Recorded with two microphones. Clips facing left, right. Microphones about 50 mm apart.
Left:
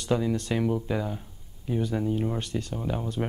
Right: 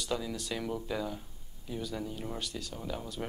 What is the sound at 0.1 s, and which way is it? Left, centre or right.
Speech, left.